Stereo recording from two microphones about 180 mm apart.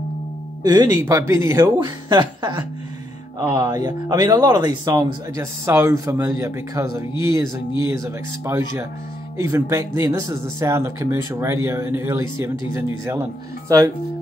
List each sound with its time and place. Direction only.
0.7 s speech: 20° right (ahead or behind)